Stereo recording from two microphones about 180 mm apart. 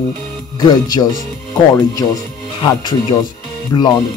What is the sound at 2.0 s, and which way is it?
Speech, 20° left (ahead or behind).